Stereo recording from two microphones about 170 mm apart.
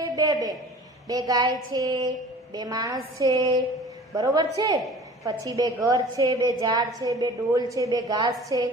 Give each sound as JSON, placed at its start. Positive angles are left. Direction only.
{"t": 0.0, "sound": "a man's voice", "side_deg": -20}